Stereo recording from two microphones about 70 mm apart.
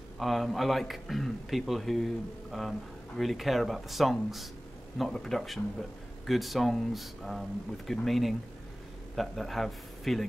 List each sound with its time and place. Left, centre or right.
0.2 s a man's voice: centre